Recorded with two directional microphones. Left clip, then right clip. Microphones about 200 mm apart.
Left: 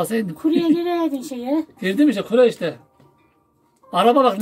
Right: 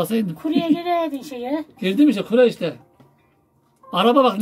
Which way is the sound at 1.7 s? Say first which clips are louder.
Right 3 dB; centre (ahead or behind).